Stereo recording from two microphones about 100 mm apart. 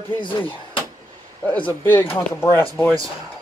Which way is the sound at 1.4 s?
15° left (ahead or behind).